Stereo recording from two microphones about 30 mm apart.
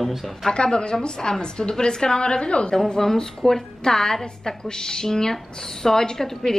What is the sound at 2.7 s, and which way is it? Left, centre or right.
A woman's voice, centre.